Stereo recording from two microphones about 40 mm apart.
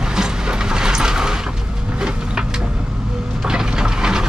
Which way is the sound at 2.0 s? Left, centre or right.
Right.